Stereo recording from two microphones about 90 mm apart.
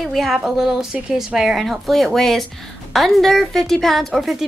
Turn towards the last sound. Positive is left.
turn(degrees=0)  # may be behind; listen again after turning